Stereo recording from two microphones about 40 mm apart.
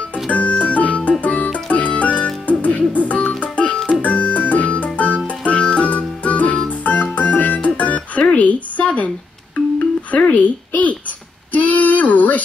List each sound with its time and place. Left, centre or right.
0.1 s music: left
10.1 s a sound: left
11.5 s female singing: left